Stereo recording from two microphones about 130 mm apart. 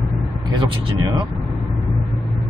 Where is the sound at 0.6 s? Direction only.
40° right (ahead or behind).